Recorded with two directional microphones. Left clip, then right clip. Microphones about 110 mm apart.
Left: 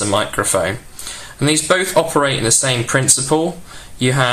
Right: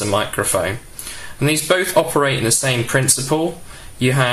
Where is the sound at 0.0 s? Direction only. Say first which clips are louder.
Left 2 dB; 30° left (ahead or behind).